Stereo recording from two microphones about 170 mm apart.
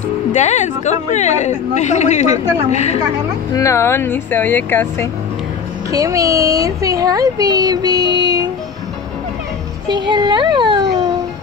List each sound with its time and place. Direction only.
0.3 s a woman's voice: 45° left (ahead or behind)
3.5 s speech: 15° left (ahead or behind)
5.9 s speech: 20° right (ahead or behind)
9.8 s a child's voice: 25° right (ahead or behind)